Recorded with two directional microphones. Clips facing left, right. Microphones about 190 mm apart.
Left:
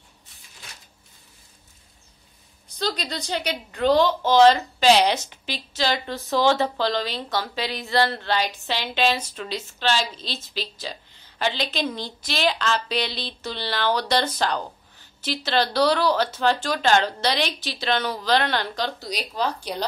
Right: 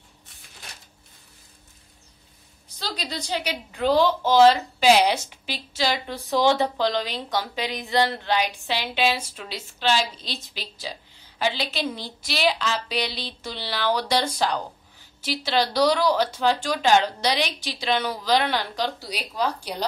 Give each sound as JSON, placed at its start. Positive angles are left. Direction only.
{"t": 2.8, "sound": "a woman's voice", "side_deg": -5}